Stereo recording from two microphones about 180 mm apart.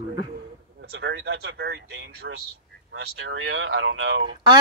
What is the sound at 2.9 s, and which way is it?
Speech, 85° right.